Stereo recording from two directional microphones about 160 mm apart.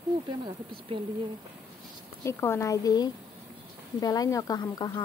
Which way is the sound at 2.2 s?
15° left (ahead or behind).